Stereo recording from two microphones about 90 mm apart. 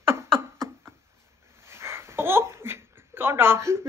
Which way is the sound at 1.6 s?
30° right (ahead or behind).